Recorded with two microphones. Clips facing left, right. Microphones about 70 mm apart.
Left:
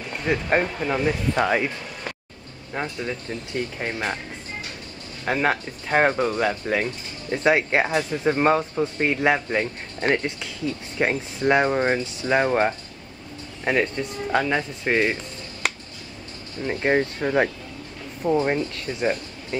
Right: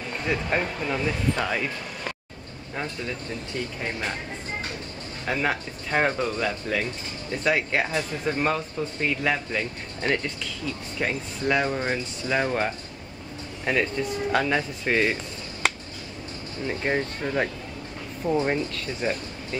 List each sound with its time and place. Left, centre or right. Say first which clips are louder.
0.5 s speech: left 4 dB; left
2.7 s speech: left 3 dB; centre
5.2 s speech: left 4 dB; left
13.9 s speech: left 1 dB; centre
16.6 s speech: left 5 dB; left
18.2 s speech: left 3 dB; centre